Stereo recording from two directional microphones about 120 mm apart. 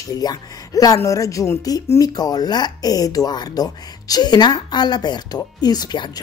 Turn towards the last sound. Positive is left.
turn(degrees=35)  # may be behind; listen again after turning